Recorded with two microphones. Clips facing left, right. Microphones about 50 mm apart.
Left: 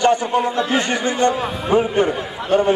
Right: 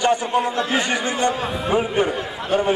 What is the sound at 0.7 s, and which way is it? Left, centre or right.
A man's voice, centre.